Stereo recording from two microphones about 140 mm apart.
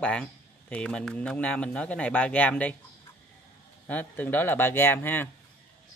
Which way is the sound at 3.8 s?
10° left (ahead or behind).